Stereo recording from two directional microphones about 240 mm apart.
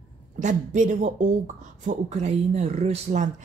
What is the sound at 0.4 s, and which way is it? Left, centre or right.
A woman's voice, right.